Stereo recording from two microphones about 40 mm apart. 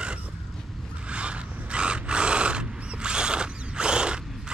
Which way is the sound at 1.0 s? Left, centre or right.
Right.